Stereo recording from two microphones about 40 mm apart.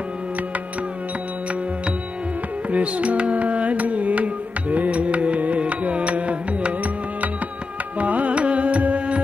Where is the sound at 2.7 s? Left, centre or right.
Right.